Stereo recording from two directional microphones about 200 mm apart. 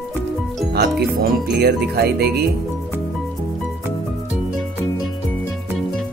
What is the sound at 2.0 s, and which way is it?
Music, 50° right (ahead or behind).